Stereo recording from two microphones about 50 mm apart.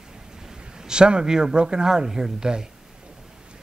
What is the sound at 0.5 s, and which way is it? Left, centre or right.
A man's voice, centre.